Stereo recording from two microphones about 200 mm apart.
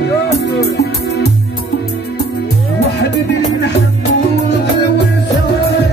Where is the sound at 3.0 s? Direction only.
60° left (ahead or behind).